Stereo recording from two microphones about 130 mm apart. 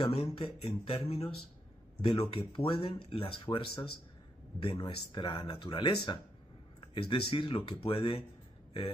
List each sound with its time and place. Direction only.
0.1 s speech: 45° left (ahead or behind)